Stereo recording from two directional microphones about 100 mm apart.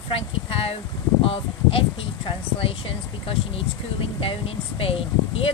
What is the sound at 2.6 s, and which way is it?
Speech, 70° left (ahead or behind).